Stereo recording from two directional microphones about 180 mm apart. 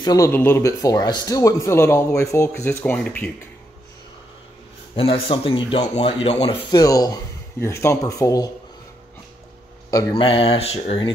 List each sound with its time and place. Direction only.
0.0 s speech: 20° left (ahead or behind)
4.9 s speech: 30° left (ahead or behind)
6.7 s speech: 20° left (ahead or behind)
9.8 s speech: 25° left (ahead or behind)